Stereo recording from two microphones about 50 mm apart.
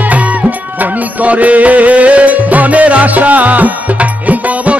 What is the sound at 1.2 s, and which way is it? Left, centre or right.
Music, right.